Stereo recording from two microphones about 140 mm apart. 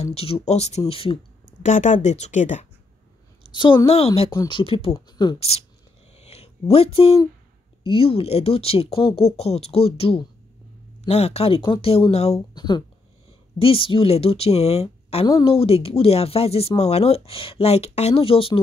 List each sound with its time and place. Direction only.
0.0 s speech: 45° left (ahead or behind)
1.6 s speech: 60° left (ahead or behind)
3.8 s speech: 45° left (ahead or behind)
5.4 s speech: 45° left (ahead or behind)
6.1 s a sound: 50° left (ahead or behind)
7.8 s speech: 40° left (ahead or behind)
12.4 s speech: 30° left (ahead or behind)